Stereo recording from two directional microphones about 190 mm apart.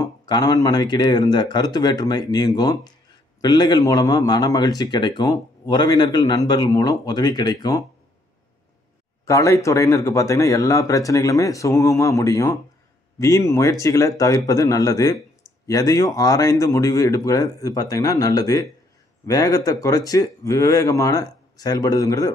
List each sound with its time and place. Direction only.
0.0 s a man's voice: 20° left (ahead or behind)
9.2 s a man's voice: 15° left (ahead or behind)